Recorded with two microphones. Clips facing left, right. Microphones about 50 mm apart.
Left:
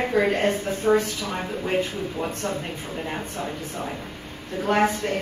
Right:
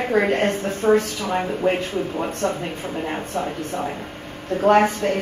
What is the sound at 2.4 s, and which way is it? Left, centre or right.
Speech, right.